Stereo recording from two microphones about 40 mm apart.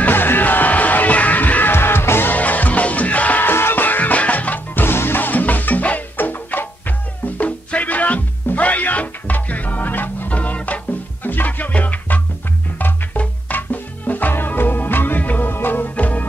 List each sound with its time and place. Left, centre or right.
0.1 s music: left
1.7 s music: left
2.3 s music: left
3.4 s music: left
3.8 s music: left
4.8 s music: left
5.3 s music: left
6.1 s music: left
7.3 s music: left
11.2 s music: left
14.3 s music: left
15.1 s music: left
16.0 s music: left